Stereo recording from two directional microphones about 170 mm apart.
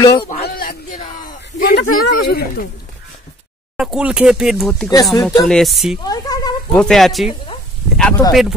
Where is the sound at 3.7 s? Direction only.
5° right (ahead or behind).